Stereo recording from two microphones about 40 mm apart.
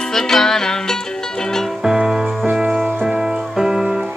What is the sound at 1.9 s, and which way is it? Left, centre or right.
Music, centre.